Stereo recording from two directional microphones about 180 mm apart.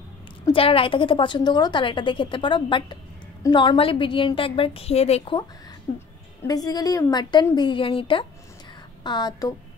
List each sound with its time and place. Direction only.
0.5 s a woman's voice: 30° left (ahead or behind)
6.4 s a woman's voice: 20° left (ahead or behind)